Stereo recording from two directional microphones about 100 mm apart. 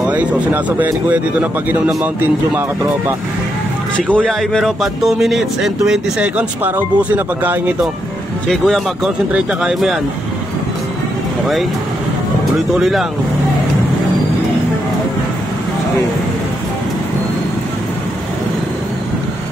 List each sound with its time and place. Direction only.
0.1 s speech: 15° right (ahead or behind)
3.9 s speech: 10° left (ahead or behind); by 7.7 s 20° right (ahead or behind)
8.5 s speech: 5° left (ahead or behind)
9.3 s speech: 10° right (ahead or behind)
12.7 s speech: centre (ahead or behind)